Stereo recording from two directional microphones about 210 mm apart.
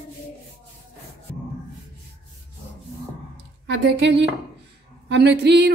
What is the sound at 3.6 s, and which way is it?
Speech, 55° right (ahead or behind).